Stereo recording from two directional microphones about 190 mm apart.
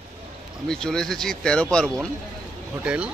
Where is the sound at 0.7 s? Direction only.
5° left (ahead or behind).